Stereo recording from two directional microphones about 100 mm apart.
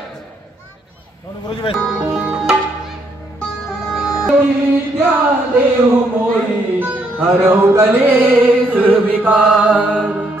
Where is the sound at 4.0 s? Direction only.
5° right (ahead or behind).